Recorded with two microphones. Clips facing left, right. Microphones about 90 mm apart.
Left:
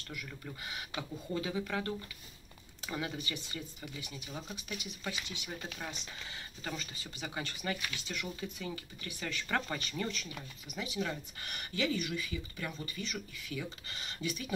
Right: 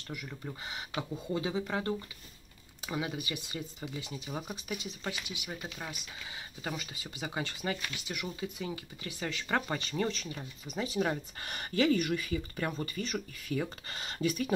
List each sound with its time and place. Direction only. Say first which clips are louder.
0.1 s speech: right 4 dB; 25° right (ahead or behind)
2.9 s speech: right 3 dB; 15° right (ahead or behind); by 14.5 s 50° right (ahead or behind)